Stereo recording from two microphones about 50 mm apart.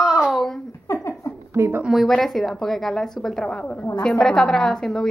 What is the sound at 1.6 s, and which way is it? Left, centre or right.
Speech, right.